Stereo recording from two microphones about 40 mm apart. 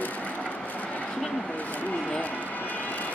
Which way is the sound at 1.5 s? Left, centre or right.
Left.